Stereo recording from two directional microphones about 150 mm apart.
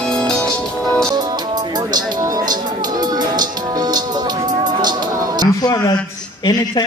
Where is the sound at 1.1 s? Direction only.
25° right (ahead or behind).